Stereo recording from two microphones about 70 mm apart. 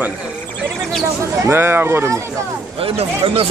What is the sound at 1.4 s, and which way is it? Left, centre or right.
Speech, right.